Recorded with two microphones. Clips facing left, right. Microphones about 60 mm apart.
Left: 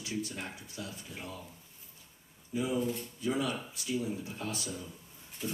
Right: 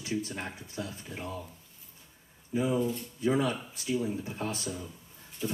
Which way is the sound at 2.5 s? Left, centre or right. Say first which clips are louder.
Right 3 dB; right.